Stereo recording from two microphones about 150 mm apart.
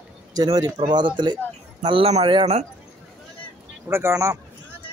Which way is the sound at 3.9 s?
15° right (ahead or behind).